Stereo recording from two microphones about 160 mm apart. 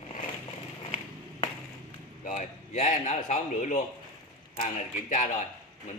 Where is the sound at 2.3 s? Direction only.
45° left (ahead or behind).